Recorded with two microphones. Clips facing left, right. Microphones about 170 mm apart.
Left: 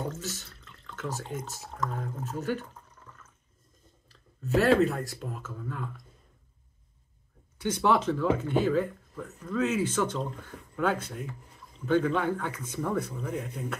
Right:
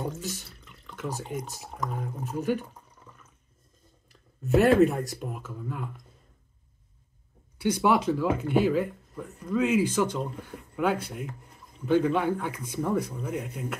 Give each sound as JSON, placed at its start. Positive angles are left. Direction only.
{"t": 0.0, "sound": "drip", "side_deg": -15}
{"t": 4.4, "sound": "speech", "side_deg": -20}
{"t": 7.5, "sound": "speech", "side_deg": -15}